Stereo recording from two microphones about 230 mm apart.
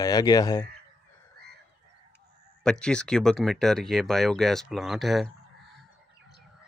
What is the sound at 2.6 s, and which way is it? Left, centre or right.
Speech, centre.